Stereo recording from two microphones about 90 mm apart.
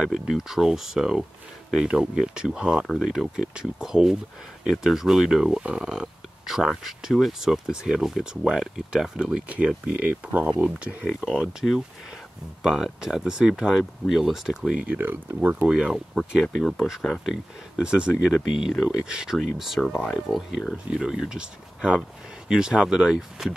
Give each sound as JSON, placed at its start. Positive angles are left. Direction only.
{"t": 0.0, "sound": "speech", "side_deg": -5}
{"t": 11.6, "sound": "speech", "side_deg": 15}
{"t": 12.6, "sound": "speech", "side_deg": -5}
{"t": 14.9, "sound": "speech", "side_deg": -20}
{"t": 15.6, "sound": "speech", "side_deg": -10}